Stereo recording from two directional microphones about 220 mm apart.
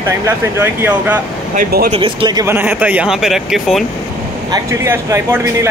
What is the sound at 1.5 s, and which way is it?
Speech, 40° right (ahead or behind).